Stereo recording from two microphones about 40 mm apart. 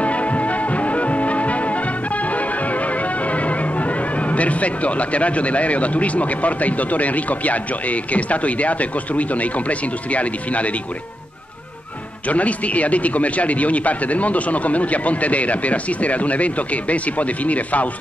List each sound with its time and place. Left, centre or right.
0.0 s music: left
12.3 s a man's voice: left